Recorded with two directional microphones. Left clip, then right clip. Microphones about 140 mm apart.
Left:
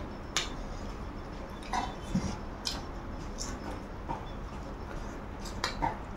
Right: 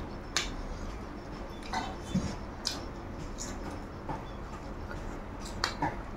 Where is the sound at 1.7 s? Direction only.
15° left (ahead or behind).